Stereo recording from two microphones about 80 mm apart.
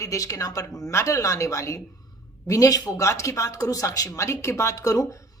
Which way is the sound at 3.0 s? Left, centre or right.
Left.